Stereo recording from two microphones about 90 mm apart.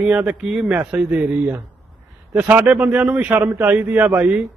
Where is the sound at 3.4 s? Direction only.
25° right (ahead or behind).